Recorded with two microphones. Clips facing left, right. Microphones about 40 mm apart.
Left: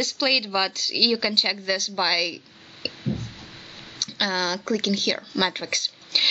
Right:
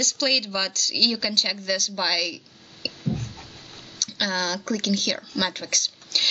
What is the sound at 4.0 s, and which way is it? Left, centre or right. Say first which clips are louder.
Speech: left 1 dB; centre.